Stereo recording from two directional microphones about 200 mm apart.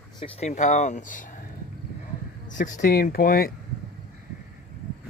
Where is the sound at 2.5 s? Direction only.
40° left (ahead or behind).